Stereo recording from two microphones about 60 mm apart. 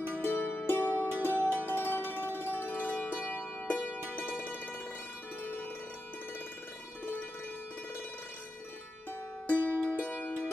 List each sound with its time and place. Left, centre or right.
0.2 s music: left
4.3 s music: left
5.4 s cowbell: left
9.5 s music: right
9.9 s music: left